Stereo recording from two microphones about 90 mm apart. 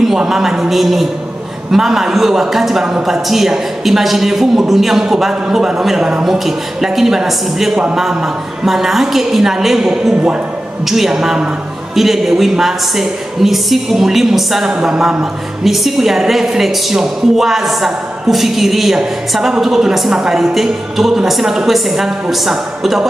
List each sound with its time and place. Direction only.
0.1 s a woman's voice: 5° right (ahead or behind)